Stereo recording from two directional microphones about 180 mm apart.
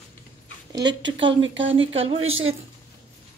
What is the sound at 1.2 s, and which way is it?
Speech, 90° right.